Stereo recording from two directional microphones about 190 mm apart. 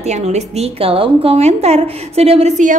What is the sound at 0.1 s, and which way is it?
A woman's voice, 35° right (ahead or behind).